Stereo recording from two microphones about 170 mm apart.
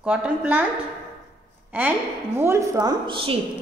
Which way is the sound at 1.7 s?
10° right (ahead or behind).